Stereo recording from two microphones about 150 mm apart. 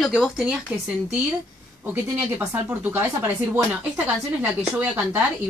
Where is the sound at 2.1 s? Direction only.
15° right (ahead or behind).